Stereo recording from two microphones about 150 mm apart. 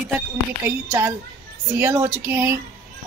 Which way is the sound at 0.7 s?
20° right (ahead or behind).